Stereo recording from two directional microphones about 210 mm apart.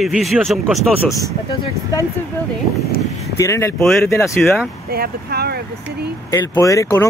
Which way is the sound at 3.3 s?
15° left (ahead or behind).